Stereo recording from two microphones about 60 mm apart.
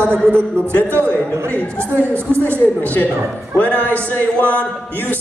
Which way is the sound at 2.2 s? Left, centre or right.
Left.